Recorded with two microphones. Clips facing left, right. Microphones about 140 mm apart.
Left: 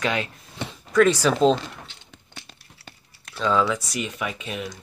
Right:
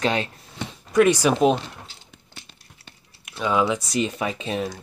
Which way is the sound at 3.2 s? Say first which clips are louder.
Even; 15° right (ahead or behind).